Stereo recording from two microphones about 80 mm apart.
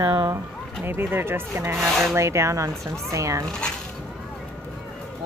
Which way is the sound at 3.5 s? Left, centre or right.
Centre.